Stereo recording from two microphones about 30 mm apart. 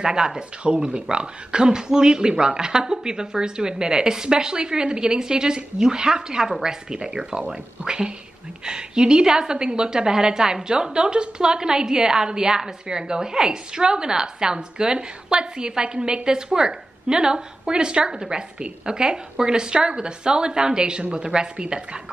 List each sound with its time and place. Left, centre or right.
0.0 s a woman's voice: right
0.7 s a woman's voice: right